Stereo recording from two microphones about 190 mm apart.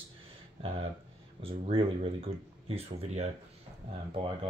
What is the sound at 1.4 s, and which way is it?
Speech, 30° right (ahead or behind).